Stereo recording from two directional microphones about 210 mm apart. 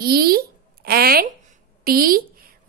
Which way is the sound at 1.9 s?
45° right (ahead or behind).